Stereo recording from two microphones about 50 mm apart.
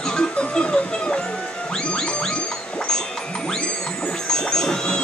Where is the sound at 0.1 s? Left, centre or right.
Centre.